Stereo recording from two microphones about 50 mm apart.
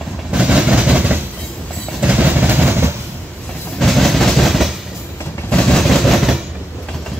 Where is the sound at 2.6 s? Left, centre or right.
Right.